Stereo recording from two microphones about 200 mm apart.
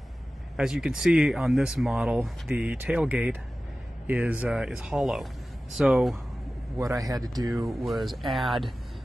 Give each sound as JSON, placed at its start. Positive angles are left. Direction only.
{"t": 0.6, "sound": "speech", "side_deg": -5}
{"t": 6.8, "sound": "speech", "side_deg": -15}
{"t": 7.6, "sound": "speech", "side_deg": 0}